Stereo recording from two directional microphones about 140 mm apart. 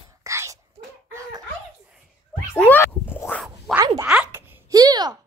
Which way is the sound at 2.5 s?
10° left (ahead or behind).